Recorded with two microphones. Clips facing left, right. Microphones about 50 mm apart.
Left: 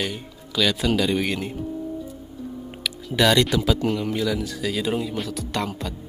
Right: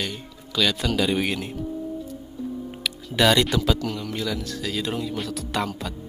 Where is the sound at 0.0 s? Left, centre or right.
Centre.